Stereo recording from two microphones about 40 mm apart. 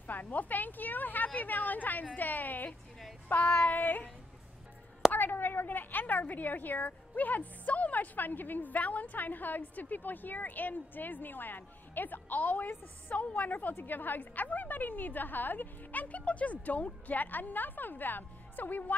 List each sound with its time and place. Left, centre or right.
0.0 s speech: left
3.3 s child singing: left
3.6 s speech: left
5.1 s speech: left